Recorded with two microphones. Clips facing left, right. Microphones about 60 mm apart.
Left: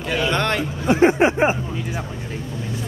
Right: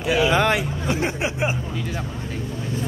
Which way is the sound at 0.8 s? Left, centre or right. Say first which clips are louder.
Left 13 dB; left.